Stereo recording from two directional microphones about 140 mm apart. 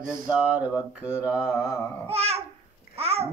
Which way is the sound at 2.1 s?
45° right (ahead or behind).